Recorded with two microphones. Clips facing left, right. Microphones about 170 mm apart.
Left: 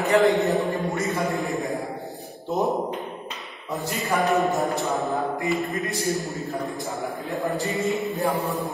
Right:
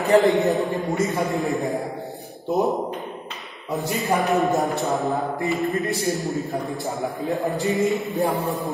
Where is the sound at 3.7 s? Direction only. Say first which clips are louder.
Right 4 dB; 20° right (ahead or behind).